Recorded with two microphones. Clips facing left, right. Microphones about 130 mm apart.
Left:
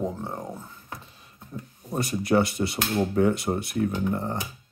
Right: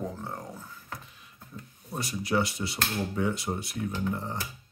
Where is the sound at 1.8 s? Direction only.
50° left (ahead or behind).